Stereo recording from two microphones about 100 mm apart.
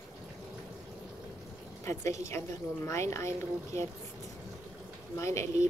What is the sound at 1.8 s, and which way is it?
Speech, 30° left (ahead or behind).